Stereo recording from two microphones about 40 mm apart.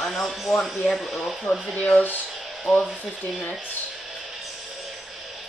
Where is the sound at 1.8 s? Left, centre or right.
Left.